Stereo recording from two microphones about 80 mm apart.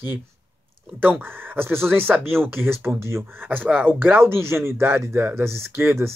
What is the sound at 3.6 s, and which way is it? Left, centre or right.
Speech, centre.